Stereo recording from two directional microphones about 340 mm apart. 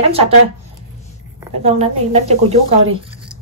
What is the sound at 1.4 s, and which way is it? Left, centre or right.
Speech, centre.